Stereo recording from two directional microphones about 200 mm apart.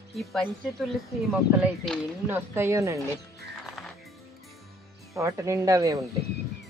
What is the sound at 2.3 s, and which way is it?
Speech, 15° right (ahead or behind).